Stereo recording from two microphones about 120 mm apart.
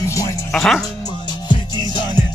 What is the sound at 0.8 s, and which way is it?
Music, 30° left (ahead or behind).